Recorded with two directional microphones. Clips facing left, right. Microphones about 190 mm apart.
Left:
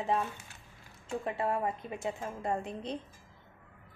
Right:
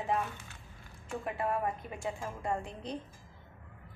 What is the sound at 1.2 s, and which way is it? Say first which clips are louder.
A woman's voice: left 1 dB; 25° left (ahead or behind).